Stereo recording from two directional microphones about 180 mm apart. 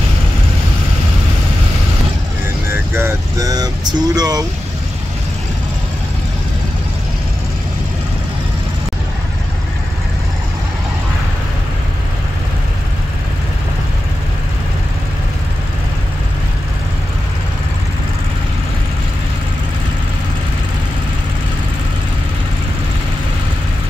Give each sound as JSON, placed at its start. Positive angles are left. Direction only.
{"t": 2.7, "sound": "vehicle", "side_deg": -15}